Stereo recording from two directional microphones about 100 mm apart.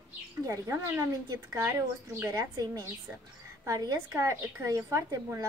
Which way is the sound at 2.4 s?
40° right (ahead or behind).